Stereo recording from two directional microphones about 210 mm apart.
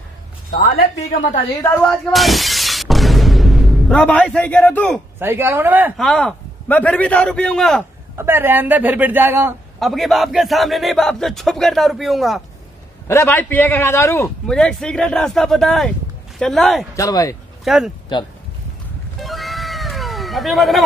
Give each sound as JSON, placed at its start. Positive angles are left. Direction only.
{"t": 1.6, "sound": "speech", "side_deg": 5}
{"t": 5.2, "sound": "speech", "side_deg": -10}
{"t": 5.9, "sound": "a man's voice", "side_deg": 0}
{"t": 8.2, "sound": "speech", "side_deg": -10}
{"t": 9.8, "sound": "a man's voice", "side_deg": 0}
{"t": 13.1, "sound": "a man's voice", "side_deg": 10}
{"t": 16.9, "sound": "a man's voice", "side_deg": 15}
{"t": 17.6, "sound": "a man's voice", "side_deg": 0}
{"t": 19.1, "sound": "cat", "side_deg": 0}